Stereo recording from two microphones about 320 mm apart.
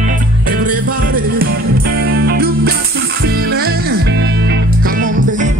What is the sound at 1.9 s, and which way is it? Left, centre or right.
Music, right.